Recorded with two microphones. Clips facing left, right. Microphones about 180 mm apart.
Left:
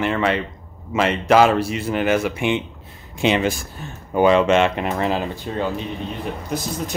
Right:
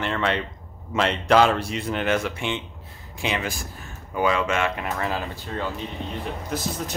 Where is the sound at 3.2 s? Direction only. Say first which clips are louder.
Left 9 dB; 25° left (ahead or behind).